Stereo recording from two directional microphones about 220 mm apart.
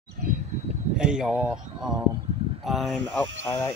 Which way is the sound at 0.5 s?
30° right (ahead or behind).